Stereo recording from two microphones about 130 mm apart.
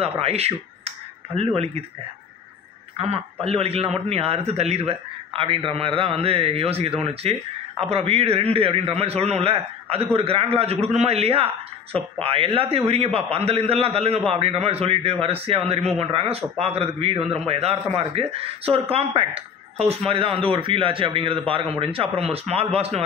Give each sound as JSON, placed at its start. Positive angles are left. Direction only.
{"t": 0.0, "sound": "speech", "side_deg": -50}
{"t": 3.0, "sound": "speech", "side_deg": -50}